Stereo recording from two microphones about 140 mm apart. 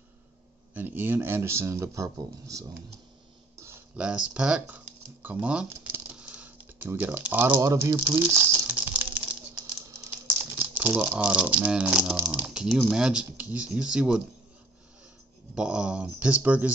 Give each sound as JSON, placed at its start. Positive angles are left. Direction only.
{"t": 0.7, "sound": "speech", "side_deg": -15}
{"t": 3.5, "sound": "a sound", "side_deg": -20}
{"t": 3.9, "sound": "speech", "side_deg": -10}
{"t": 5.7, "sound": "typing", "side_deg": -10}
{"t": 9.8, "sound": "rattle", "side_deg": -20}
{"t": 12.2, "sound": "speech", "side_deg": -10}
{"t": 15.5, "sound": "speech", "side_deg": -5}